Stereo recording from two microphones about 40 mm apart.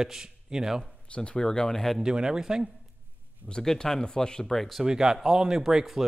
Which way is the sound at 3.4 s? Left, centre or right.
Centre.